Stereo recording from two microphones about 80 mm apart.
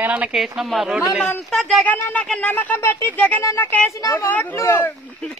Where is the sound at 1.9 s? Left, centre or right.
Left.